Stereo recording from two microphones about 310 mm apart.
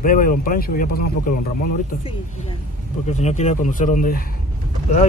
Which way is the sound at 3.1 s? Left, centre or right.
Left.